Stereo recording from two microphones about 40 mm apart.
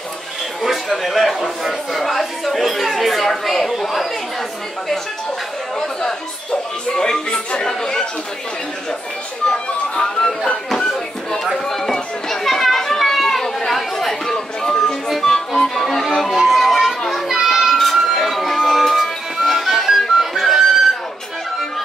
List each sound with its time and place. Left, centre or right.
0.6 s a man's voice: centre
6.9 s speech: centre
9.9 s speech: left
11.5 s children playing: centre
15.0 s music: centre
16.2 s children playing: centre
17.4 s children playing: centre
17.9 s music: centre